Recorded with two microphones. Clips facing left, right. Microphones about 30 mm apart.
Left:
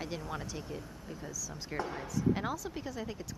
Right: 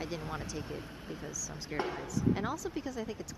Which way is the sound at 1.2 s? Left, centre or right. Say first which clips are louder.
Left 1 dB; centre.